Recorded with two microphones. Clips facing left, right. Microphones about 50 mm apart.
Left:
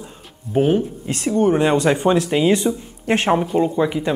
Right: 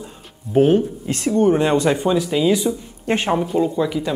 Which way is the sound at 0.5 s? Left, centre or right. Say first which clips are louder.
Right 2 dB; centre.